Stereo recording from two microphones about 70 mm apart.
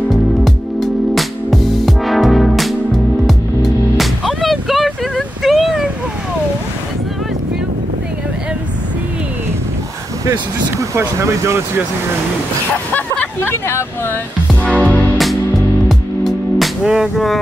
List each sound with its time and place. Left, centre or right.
0.1 s music: centre
5.4 s a sound: centre
10.8 s speech: right
12.9 s speech: left
14.6 s music: centre
15.9 s music: centre